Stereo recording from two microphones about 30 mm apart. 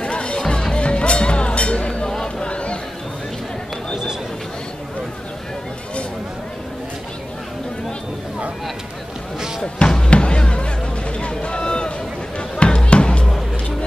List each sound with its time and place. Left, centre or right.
0.0 s music: left
2.0 s music: centre
2.4 s chatter: left
9.8 s music: left